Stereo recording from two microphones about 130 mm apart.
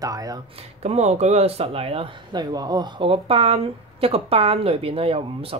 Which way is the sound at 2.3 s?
30° right (ahead or behind).